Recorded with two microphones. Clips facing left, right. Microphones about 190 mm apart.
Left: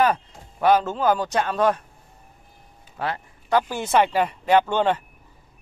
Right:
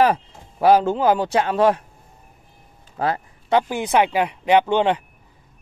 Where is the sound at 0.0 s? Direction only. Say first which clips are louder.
Right 3 dB; 30° right (ahead or behind).